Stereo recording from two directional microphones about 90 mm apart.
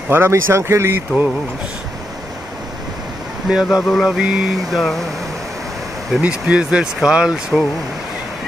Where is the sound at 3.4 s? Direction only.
5° right (ahead or behind).